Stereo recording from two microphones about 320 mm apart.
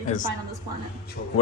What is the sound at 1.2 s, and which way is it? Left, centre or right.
Speech, left.